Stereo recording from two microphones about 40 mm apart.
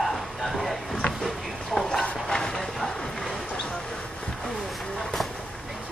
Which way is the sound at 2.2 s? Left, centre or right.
Centre.